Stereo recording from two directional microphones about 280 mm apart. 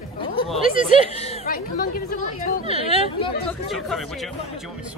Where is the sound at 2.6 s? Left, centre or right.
Centre.